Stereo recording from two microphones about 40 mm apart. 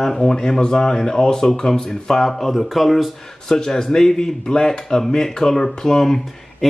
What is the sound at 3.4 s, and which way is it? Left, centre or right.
Speech, centre.